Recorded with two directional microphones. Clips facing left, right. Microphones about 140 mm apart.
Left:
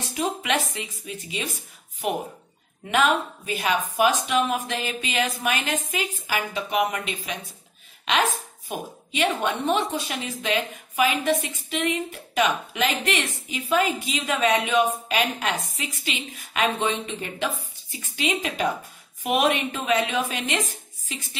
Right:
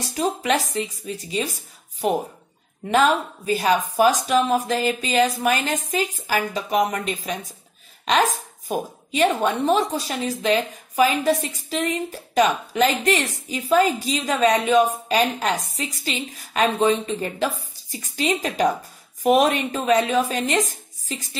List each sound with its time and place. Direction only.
0.1 s a woman's voice: 35° right (ahead or behind)